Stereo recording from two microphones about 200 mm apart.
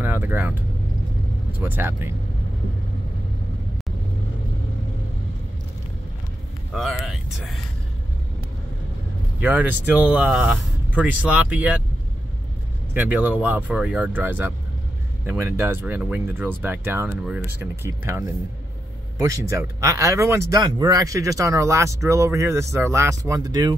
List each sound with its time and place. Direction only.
0.0 s speech: 10° right (ahead or behind)
1.6 s speech: 10° right (ahead or behind)
6.7 s speech: centre (ahead or behind)
9.4 s speech: 5° right (ahead or behind)
12.9 s speech: 10° right (ahead or behind)